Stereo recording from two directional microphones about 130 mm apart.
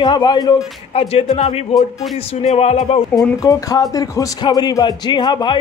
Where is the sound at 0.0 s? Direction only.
35° left (ahead or behind).